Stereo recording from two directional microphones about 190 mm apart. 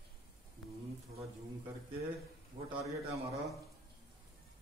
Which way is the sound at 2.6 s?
35° right (ahead or behind).